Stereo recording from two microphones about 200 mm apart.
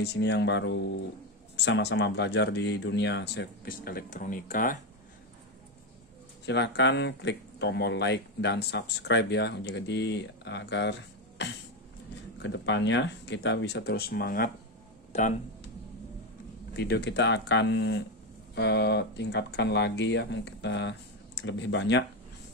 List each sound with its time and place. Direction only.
0.0 s speech: 60° left (ahead or behind); by 4.7 s 40° left (ahead or behind)
6.4 s speech: 60° left (ahead or behind)
16.7 s speech: 55° left (ahead or behind)